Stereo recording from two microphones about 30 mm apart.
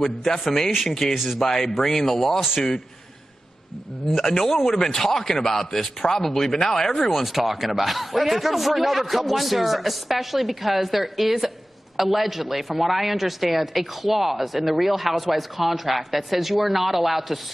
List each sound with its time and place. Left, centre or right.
0.2 s a man's voice: centre
1.1 s speech: centre
1.4 s a man's voice: centre
4.1 s a man's voice: centre
7.1 s speech: centre